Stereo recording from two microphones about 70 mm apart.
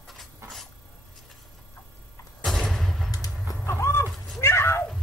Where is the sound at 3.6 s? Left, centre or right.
Left.